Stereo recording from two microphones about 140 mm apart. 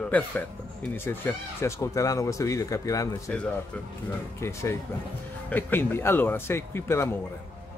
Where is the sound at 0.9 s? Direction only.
15° left (ahead or behind).